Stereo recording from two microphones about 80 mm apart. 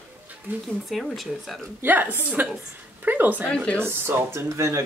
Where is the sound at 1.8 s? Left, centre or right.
Right.